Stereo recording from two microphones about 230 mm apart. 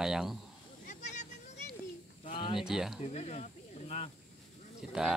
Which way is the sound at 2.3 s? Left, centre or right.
Left.